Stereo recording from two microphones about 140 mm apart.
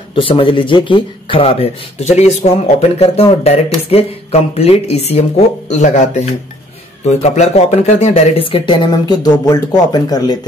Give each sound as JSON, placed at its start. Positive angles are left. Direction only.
{"t": 0.1, "sound": "speech", "side_deg": 40}
{"t": 5.7, "sound": "speech", "side_deg": 60}